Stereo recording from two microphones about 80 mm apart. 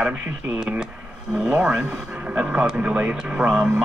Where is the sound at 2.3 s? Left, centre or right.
Centre.